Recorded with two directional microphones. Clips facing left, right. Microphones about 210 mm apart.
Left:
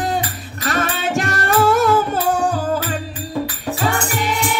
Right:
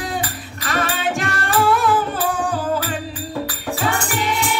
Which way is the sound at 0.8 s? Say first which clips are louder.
Left 1 dB; 40° left (ahead or behind).